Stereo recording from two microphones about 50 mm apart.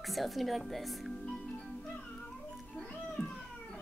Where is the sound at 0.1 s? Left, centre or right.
Centre.